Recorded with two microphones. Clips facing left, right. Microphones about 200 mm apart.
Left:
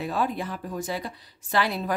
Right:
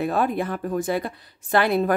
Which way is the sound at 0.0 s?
55° right (ahead or behind).